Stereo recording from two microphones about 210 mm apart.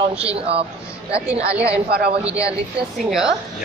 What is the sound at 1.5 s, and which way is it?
A woman's voice, 5° right (ahead or behind).